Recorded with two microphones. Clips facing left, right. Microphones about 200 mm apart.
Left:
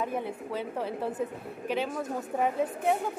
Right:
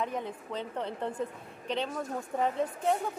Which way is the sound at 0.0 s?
10° left (ahead or behind).